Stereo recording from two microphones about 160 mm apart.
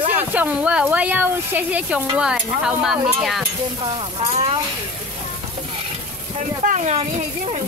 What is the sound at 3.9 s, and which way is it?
Speech, 30° right (ahead or behind).